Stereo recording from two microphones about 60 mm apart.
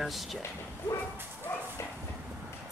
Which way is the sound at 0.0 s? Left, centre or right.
Centre.